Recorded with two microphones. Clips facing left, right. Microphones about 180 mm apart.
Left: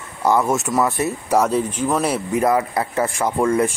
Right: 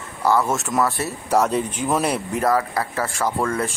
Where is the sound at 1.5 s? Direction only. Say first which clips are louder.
Left 2 dB; centre (ahead or behind).